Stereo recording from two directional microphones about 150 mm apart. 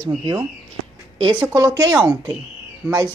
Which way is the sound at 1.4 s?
25° right (ahead or behind).